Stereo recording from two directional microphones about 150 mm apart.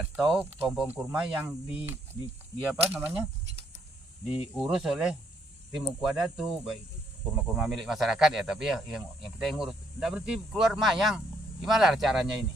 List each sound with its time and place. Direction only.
0.2 s speech: centre (ahead or behind)
4.6 s speech: 5° right (ahead or behind)